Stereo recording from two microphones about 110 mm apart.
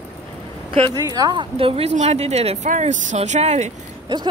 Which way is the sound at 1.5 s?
65° right (ahead or behind).